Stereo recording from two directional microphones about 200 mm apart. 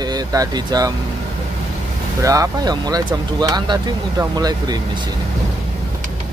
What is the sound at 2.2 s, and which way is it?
Speech, 15° right (ahead or behind).